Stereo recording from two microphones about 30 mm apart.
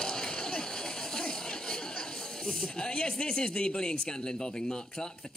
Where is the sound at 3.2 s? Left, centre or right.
Left.